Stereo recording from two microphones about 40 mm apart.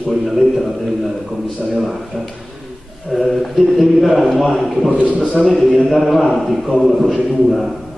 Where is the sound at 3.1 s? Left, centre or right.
Centre.